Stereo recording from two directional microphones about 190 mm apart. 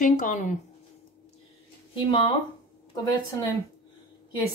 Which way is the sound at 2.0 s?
25° left (ahead or behind).